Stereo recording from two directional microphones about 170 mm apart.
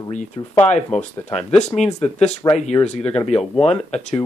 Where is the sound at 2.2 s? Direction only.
40° left (ahead or behind).